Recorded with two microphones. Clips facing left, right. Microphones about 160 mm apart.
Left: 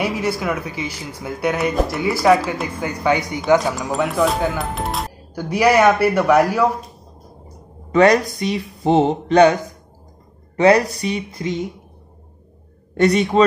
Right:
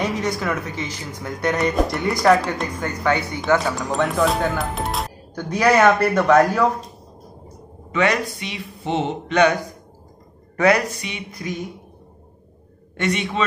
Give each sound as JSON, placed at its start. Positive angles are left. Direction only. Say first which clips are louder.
{"t": 0.0, "sound": "a man's voice", "louder": "left 2 dB", "side_deg": 10}
{"t": 3.7, "sound": "a man's voice", "louder": "left 1 dB", "side_deg": 0}
{"t": 7.9, "sound": "speech", "louder": "left 7 dB", "side_deg": 40}
{"t": 11.4, "sound": "a woman's voice", "louder": "left 4 dB", "side_deg": 20}
{"t": 12.9, "sound": "a man's voice", "louder": "left 8 dB", "side_deg": 35}